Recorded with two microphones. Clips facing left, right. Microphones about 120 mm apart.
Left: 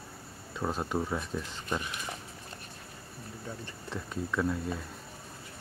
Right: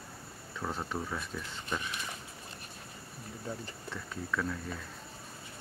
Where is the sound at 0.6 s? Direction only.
20° left (ahead or behind).